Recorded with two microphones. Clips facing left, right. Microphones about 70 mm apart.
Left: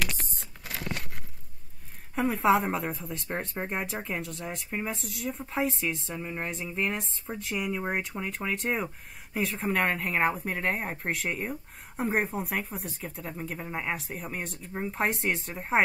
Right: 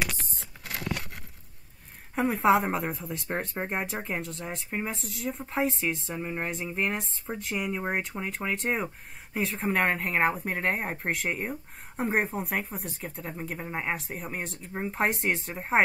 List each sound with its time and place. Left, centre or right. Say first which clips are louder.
0.7 s a sound: right 2 dB; right
2.1 s a woman's voice: right 1 dB; centre
4.6 s speech: right 1 dB; centre
4.9 s a woman's voice: right 1 dB; centre